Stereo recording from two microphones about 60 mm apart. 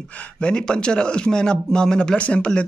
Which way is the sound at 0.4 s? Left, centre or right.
Centre.